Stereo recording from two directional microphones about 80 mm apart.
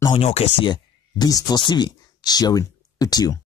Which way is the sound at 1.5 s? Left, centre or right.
Left.